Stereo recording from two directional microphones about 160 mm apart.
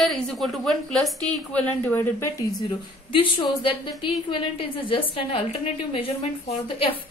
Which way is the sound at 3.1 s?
30° left (ahead or behind).